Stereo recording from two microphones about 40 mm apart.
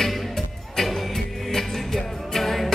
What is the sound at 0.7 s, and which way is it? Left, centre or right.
Music, centre.